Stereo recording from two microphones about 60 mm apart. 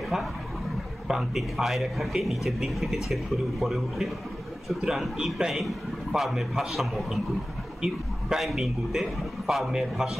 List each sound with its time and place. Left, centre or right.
1.0 s a man's voice: centre